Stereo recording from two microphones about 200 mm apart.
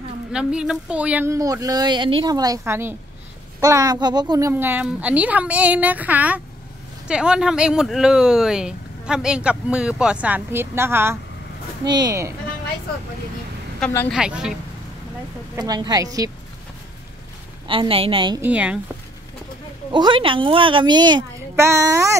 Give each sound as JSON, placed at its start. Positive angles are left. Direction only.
{"t": 0.3, "sound": "a child's voice", "side_deg": -5}
{"t": 13.7, "sound": "a woman's voice", "side_deg": 5}
{"t": 14.1, "sound": "speech", "side_deg": -5}
{"t": 15.5, "sound": "a woman's voice", "side_deg": -20}
{"t": 17.6, "sound": "a woman's voice", "side_deg": -25}
{"t": 18.4, "sound": "a child's voice", "side_deg": -5}
{"t": 19.9, "sound": "a woman's voice", "side_deg": -25}